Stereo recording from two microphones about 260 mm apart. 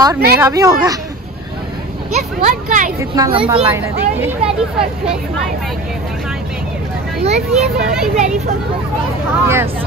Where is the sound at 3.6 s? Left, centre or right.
Centre.